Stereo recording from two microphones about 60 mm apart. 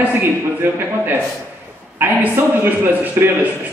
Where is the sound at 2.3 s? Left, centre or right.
Right.